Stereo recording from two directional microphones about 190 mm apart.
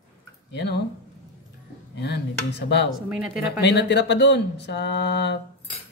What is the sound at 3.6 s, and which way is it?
Speech, 65° left (ahead or behind).